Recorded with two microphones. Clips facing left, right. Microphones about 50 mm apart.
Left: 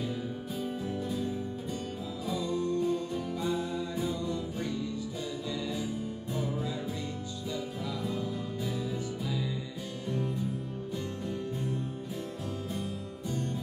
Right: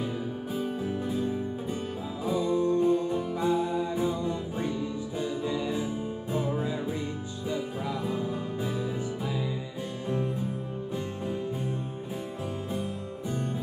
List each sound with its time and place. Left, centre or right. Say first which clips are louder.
0.7 s music: right 1 dB; right
10.0 s music: right 3 dB; right